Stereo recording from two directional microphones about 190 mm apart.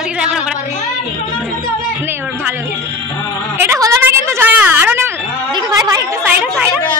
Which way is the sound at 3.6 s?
15° right (ahead or behind).